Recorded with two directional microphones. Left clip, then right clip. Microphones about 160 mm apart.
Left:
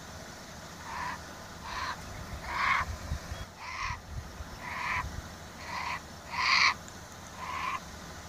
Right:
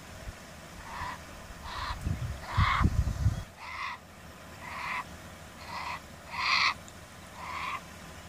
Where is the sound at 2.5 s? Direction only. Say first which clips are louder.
Left 1 dB; 20° left (ahead or behind).